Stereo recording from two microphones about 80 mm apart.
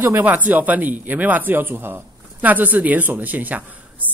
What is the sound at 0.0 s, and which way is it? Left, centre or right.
Speech, right.